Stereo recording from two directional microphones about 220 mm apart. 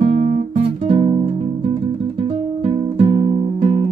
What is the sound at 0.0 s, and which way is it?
Music, 25° right (ahead or behind).